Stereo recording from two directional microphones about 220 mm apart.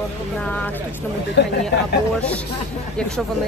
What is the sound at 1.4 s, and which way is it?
Speech, 50° left (ahead or behind).